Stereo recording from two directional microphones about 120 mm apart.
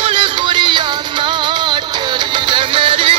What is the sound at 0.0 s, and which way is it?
Music, 45° right (ahead or behind).